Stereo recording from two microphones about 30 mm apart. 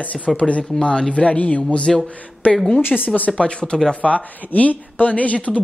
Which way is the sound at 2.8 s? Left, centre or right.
Left.